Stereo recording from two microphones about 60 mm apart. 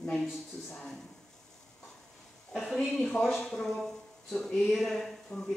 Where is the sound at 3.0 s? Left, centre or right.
Centre.